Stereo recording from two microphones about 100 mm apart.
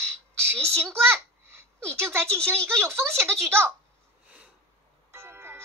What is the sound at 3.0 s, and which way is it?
Speech, 25° right (ahead or behind).